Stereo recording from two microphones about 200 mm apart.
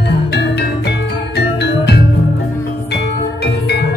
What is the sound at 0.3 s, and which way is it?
Music, 55° left (ahead or behind).